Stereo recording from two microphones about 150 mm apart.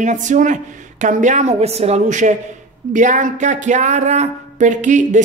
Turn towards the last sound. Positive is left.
turn(degrees=-55)  # may be behind; listen again after turning